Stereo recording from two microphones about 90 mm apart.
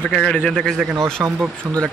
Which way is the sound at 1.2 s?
10° right (ahead or behind).